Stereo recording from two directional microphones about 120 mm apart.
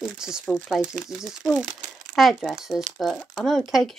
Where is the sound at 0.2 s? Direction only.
5° right (ahead or behind).